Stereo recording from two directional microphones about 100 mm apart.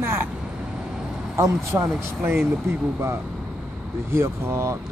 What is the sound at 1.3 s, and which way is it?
Speech, 30° right (ahead or behind).